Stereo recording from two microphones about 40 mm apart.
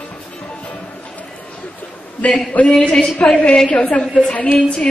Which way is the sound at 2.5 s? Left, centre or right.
Left.